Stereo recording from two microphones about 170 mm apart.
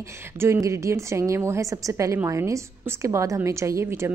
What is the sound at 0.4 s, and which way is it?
A woman's voice, 15° right (ahead or behind).